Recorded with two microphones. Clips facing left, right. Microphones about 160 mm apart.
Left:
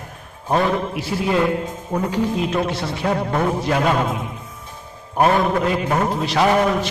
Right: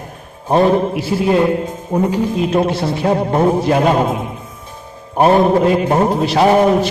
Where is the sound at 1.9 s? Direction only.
20° right (ahead or behind).